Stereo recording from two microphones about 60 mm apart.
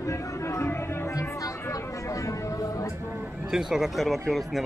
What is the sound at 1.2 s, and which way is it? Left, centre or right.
Speech, left.